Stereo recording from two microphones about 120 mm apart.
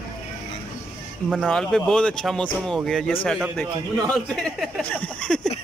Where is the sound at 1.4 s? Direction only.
5° left (ahead or behind).